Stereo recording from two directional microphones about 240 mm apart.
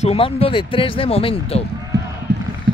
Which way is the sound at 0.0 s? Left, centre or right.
Left.